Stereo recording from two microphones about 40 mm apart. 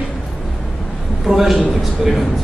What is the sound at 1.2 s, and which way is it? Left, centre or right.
Speech, centre.